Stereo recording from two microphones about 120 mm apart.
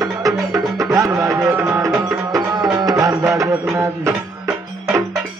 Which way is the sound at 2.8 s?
30° right (ahead or behind).